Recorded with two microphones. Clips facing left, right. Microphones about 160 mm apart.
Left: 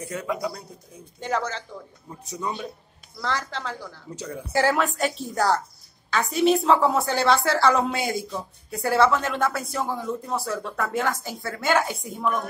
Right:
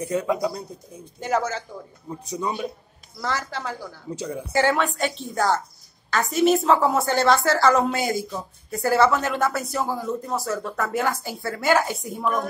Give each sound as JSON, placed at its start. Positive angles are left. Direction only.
{"t": 0.0, "sound": "speech", "side_deg": -20}
{"t": 1.2, "sound": "speech", "side_deg": -5}
{"t": 4.5, "sound": "a woman's voice", "side_deg": 0}